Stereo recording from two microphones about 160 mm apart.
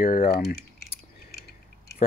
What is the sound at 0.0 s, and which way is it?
Speech, 60° left (ahead or behind).